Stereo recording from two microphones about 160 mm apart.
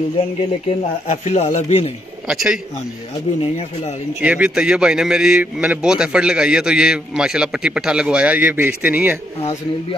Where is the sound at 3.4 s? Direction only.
40° left (ahead or behind).